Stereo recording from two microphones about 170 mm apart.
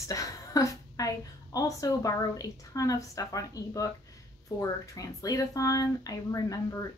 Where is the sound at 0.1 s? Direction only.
20° left (ahead or behind).